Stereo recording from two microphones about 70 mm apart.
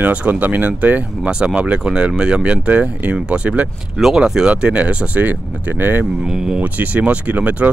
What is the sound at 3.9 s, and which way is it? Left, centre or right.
Speech, centre.